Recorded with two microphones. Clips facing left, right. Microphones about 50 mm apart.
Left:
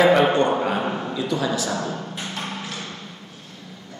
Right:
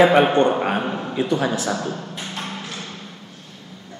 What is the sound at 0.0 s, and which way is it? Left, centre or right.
Speech, right.